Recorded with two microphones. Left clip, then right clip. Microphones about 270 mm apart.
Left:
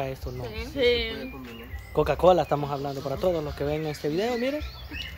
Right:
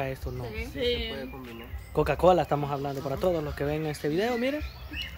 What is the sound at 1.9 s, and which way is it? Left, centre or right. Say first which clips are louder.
Speech: left 2 dB; centre.